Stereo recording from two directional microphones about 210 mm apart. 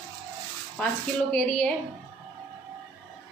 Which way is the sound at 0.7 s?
5° left (ahead or behind).